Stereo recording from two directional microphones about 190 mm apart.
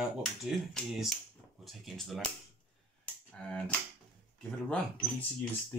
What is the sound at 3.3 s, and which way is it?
Speech, 5° left (ahead or behind).